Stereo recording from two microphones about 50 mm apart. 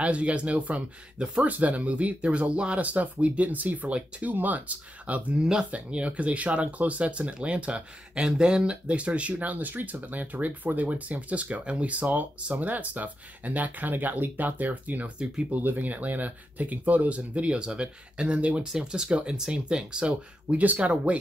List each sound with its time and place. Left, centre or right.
0.0 s speech: right
1.4 s speech: right
18.7 s speech: centre